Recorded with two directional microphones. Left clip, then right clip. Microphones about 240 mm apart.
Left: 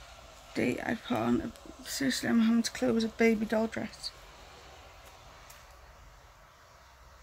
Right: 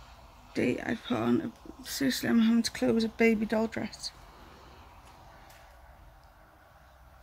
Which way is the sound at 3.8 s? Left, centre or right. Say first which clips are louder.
Right 1 dB; right.